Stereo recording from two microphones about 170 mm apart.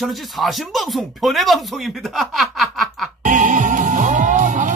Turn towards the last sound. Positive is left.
turn(degrees=-50)  # may be behind; listen again after turning